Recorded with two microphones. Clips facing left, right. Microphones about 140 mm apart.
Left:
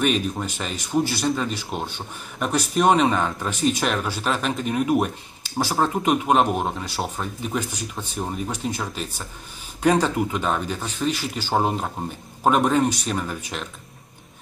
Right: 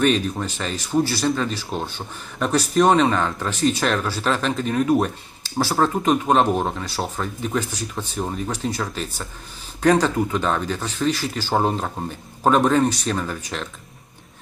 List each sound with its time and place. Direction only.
0.0 s speech: 10° left (ahead or behind)
9.8 s speech: 10° left (ahead or behind)